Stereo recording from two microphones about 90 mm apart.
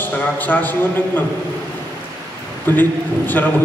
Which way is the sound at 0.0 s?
20° left (ahead or behind).